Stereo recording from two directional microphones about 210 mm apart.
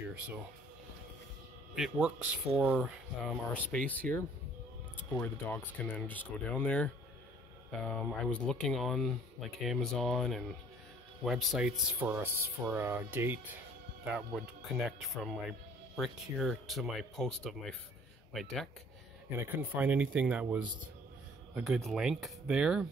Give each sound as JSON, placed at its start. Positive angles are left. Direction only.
{"t": 1.8, "sound": "speech", "side_deg": 0}
{"t": 3.5, "sound": "speech", "side_deg": 5}
{"t": 19.3, "sound": "speech", "side_deg": -10}